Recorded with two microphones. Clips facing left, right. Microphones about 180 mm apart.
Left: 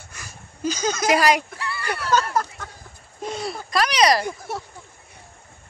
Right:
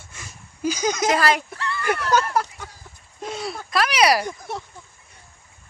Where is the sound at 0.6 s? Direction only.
10° right (ahead or behind).